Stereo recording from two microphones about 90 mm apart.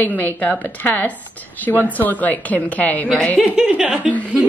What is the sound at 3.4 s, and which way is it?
Speech, 10° right (ahead or behind).